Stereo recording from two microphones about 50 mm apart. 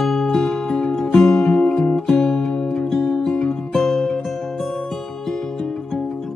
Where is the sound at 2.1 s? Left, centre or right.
Centre.